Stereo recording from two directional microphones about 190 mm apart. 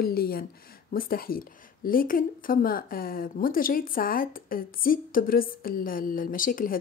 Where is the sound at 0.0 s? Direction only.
55° left (ahead or behind).